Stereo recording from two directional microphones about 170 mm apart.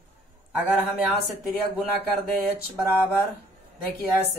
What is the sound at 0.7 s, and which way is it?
Speech, 5° right (ahead or behind).